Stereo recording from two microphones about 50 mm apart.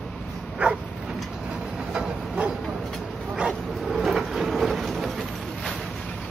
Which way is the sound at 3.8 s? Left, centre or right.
Centre.